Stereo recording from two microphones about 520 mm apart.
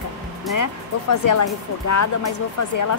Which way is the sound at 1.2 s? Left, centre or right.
Left.